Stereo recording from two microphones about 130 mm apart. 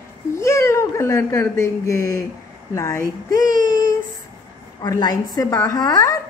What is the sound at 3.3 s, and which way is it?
Speech, 90° right.